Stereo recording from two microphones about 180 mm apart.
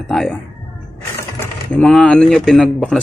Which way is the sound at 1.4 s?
5° left (ahead or behind).